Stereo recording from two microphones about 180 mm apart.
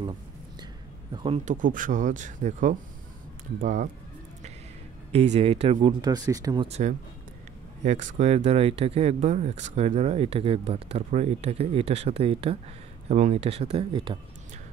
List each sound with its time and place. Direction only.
1.1 s speech: 30° right (ahead or behind)
1.4 s speech: 45° right (ahead or behind)
5.1 s speech: 35° right (ahead or behind)
6.0 s speech: 20° right (ahead or behind)
6.7 s speech: 40° right (ahead or behind)